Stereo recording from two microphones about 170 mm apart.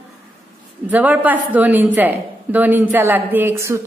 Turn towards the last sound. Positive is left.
turn(degrees=-15)  # may be behind; listen again after turning